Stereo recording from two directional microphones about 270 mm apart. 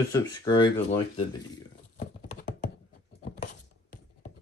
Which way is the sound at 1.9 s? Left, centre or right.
Left.